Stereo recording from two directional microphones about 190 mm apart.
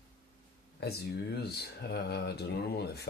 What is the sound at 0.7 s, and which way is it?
Speech, 60° left (ahead or behind).